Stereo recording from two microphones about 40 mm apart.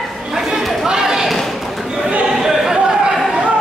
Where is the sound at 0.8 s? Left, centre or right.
Centre.